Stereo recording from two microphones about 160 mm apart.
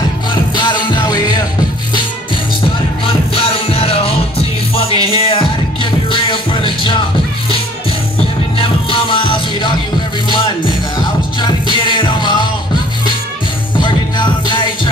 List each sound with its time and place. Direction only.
0.3 s music: 30° left (ahead or behind)
3.3 s music: 35° left (ahead or behind)
8.5 s music: 35° left (ahead or behind)
11.4 s music: 30° left (ahead or behind)
13.7 s music: 30° left (ahead or behind)